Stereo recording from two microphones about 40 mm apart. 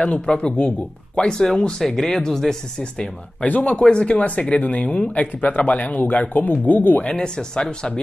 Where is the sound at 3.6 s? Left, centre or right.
Left.